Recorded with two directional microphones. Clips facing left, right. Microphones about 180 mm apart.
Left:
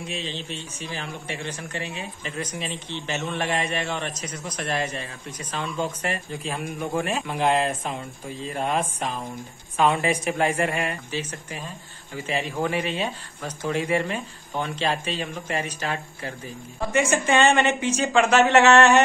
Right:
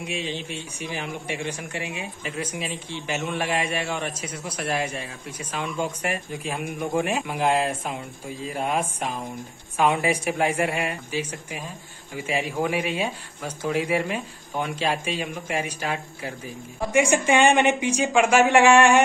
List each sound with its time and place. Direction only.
0.0 s a man's voice: 15° right (ahead or behind)